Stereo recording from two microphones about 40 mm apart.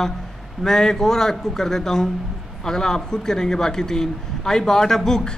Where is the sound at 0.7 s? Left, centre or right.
Centre.